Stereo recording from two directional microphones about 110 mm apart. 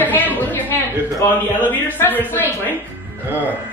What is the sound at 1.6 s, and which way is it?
Speech, 15° left (ahead or behind).